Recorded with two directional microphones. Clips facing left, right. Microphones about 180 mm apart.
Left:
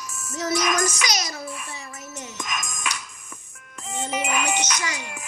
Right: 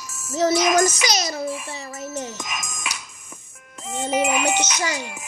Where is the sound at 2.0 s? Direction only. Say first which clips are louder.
Right 11 dB; 30° right (ahead or behind).